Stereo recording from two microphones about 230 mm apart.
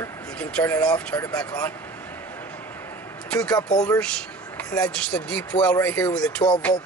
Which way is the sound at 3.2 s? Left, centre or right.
Centre.